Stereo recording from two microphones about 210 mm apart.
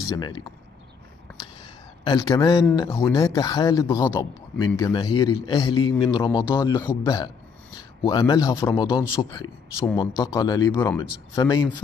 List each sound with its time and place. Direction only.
0.1 s a man's voice: 20° left (ahead or behind)
2.0 s a man's voice: 15° left (ahead or behind)
8.0 s a man's voice: 20° left (ahead or behind)